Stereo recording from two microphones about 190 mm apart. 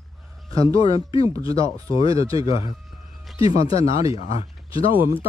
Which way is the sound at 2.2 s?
20° right (ahead or behind).